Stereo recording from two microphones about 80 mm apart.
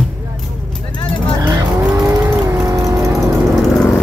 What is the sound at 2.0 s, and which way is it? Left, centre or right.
Vehicle, right.